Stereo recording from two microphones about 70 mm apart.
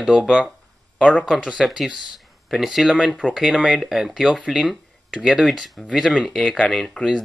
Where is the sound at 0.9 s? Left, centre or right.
Centre.